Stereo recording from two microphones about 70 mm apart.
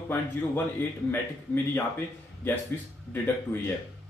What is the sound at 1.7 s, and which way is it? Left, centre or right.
A man's voice, left.